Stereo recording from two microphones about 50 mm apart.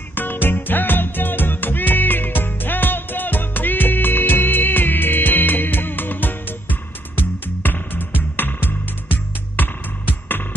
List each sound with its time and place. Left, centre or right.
0.1 s music: left